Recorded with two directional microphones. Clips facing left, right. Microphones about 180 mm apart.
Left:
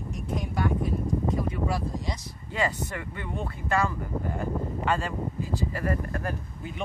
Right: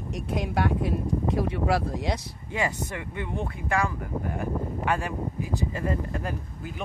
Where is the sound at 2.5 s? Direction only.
15° right (ahead or behind).